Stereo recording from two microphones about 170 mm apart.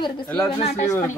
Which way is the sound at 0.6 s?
40° left (ahead or behind).